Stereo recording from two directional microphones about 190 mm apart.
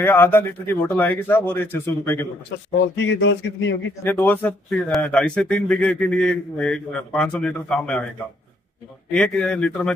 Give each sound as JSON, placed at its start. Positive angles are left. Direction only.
{"t": 0.0, "sound": "a man's voice", "side_deg": 10}
{"t": 3.0, "sound": "speech", "side_deg": 75}
{"t": 4.0, "sound": "speech", "side_deg": 10}
{"t": 9.1, "sound": "speech", "side_deg": 5}